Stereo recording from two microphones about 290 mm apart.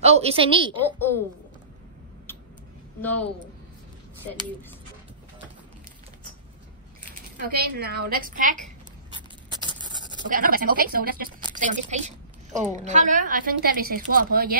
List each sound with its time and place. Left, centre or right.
0.0 s a woman's voice: right
2.3 s a sound: centre
3.0 s speech: centre
7.3 s speech: right
10.3 s a woman's voice: right